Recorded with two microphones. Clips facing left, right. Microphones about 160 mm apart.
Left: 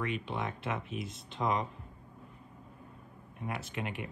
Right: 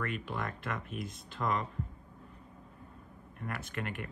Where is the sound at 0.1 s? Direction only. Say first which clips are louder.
Left 2 dB; centre (ahead or behind).